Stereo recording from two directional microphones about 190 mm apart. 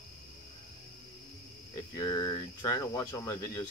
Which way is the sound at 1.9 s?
20° left (ahead or behind).